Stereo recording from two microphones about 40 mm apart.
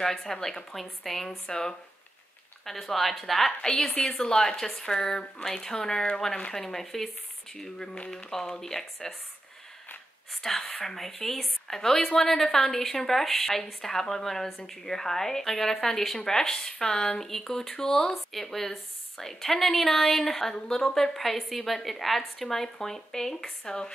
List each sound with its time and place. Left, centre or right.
0.0 s a woman's voice: centre
2.6 s speech: centre
3.6 s a woman's voice: centre
10.4 s a woman's voice: centre